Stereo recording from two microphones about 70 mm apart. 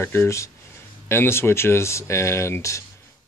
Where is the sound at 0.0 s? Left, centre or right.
Left.